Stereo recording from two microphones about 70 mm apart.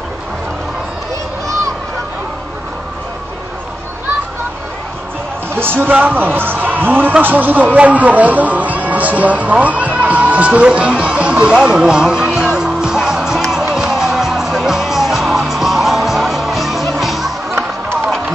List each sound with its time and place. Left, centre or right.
5.5 s speech: right; by 13.4 s centre
13.7 s music: centre